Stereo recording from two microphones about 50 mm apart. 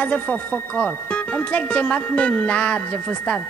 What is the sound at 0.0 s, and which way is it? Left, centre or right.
Speech, left.